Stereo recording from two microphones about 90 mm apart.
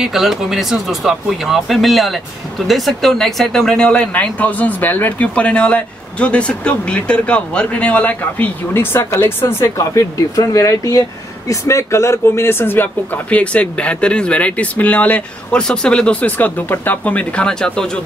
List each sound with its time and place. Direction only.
0.0 s speech: 5° right (ahead or behind)